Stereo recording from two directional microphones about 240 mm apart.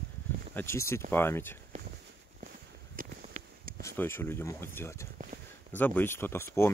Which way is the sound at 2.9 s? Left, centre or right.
Right.